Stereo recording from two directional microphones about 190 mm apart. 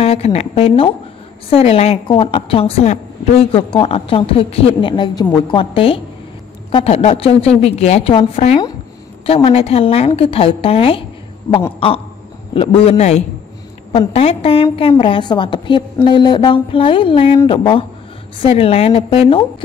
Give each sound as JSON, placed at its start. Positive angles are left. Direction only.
{"t": 0.0, "sound": "a woman's voice", "side_deg": 30}
{"t": 12.5, "sound": "a woman's voice", "side_deg": 30}